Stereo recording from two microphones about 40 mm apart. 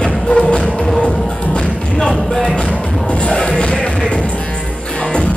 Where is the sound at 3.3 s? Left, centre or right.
Centre.